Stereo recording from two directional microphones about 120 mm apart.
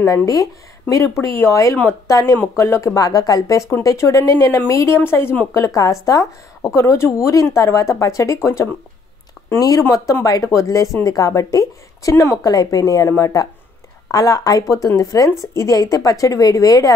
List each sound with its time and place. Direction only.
0.0 s speech: 25° left (ahead or behind)